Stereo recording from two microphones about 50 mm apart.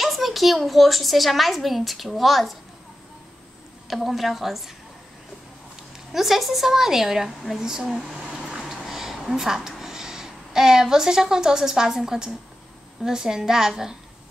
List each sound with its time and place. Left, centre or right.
0.0 s a woman's voice: centre
3.8 s a woman's voice: centre
6.1 s a woman's voice: centre